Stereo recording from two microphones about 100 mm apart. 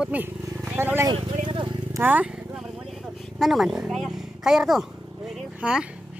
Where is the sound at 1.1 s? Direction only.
55° right (ahead or behind).